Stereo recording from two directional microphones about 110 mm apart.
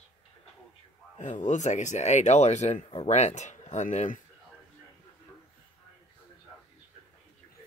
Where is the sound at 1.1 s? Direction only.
90° left.